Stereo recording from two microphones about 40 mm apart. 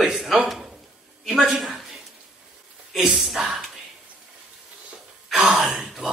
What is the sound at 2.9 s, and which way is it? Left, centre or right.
Speech, centre.